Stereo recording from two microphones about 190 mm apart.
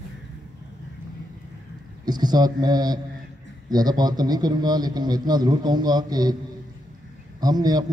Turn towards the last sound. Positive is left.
turn(degrees=-20)  # may be behind; listen again after turning